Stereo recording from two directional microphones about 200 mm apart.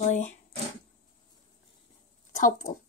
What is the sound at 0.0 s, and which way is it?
Speech, 35° left (ahead or behind).